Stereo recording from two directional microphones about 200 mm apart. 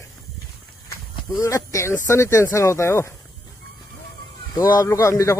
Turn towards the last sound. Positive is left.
turn(degrees=15)  # may be behind; listen again after turning